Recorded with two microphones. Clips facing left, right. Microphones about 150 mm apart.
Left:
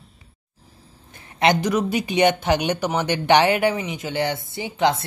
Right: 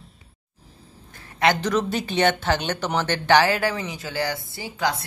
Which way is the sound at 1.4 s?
15° left (ahead or behind).